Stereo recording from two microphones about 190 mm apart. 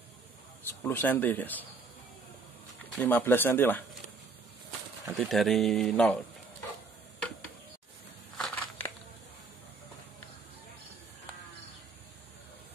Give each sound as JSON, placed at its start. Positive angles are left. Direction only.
{"t": 0.7, "sound": "speech", "side_deg": 10}
{"t": 3.0, "sound": "speech", "side_deg": 10}
{"t": 5.1, "sound": "speech", "side_deg": 0}
{"t": 8.4, "sound": "crushing", "side_deg": 5}